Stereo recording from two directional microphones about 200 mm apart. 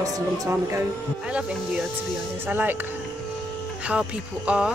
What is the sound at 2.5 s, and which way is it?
Speech, 10° right (ahead or behind).